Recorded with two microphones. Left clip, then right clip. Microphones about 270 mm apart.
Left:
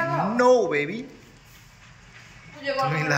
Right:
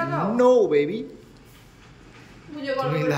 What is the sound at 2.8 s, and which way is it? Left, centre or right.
Speech, centre.